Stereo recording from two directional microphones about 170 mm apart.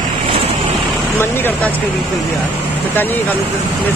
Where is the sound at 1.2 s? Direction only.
10° left (ahead or behind).